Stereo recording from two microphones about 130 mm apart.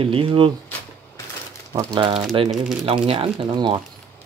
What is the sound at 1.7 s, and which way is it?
Speech, 30° right (ahead or behind).